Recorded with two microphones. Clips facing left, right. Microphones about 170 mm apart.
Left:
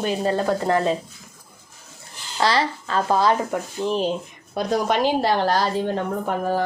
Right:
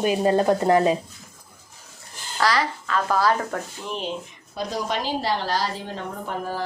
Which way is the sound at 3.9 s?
40° left (ahead or behind).